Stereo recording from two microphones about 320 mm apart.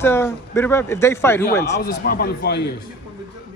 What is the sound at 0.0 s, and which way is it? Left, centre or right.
Speech, centre.